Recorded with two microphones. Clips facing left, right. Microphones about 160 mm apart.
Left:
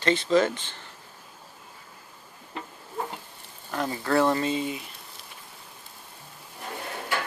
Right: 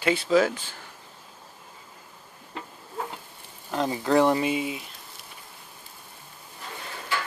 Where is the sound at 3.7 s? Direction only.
20° right (ahead or behind).